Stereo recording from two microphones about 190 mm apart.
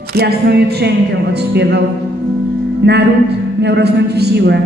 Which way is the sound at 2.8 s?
60° right (ahead or behind).